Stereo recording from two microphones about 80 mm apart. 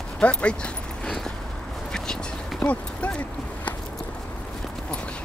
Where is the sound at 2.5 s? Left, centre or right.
Centre.